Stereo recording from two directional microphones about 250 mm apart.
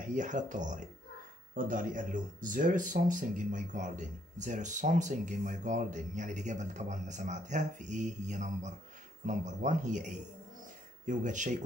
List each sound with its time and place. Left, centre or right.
0.0 s speech: right